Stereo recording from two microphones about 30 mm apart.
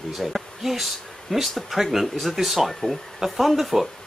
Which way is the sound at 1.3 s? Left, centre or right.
Centre.